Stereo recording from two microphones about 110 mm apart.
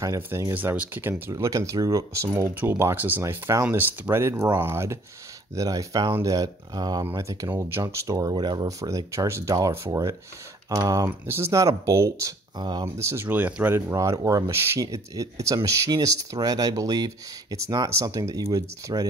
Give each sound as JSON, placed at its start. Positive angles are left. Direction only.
{"t": 0.0, "sound": "speech", "side_deg": -30}
{"t": 0.5, "sound": "speech", "side_deg": -15}
{"t": 1.3, "sound": "speech", "side_deg": -30}
{"t": 8.8, "sound": "speech", "side_deg": -30}
{"t": 11.2, "sound": "speech", "side_deg": -20}
{"t": 12.8, "sound": "speech", "side_deg": -25}
{"t": 13.9, "sound": "speech", "side_deg": -30}